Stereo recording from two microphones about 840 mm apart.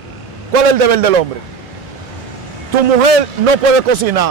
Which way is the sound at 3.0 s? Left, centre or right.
Right.